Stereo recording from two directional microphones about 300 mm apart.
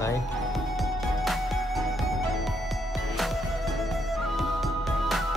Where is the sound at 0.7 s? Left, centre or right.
Centre.